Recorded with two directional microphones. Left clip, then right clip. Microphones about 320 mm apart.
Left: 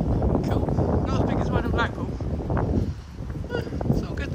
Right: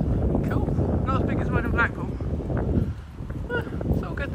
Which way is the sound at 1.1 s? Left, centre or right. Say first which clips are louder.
Even; centre.